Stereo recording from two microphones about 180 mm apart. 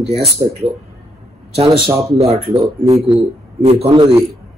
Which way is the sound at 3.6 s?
35° right (ahead or behind).